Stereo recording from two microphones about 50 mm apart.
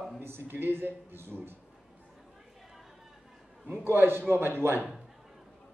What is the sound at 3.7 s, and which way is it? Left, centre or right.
A man's voice, right.